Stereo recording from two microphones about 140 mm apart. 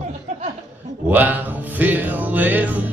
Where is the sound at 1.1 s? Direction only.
10° right (ahead or behind).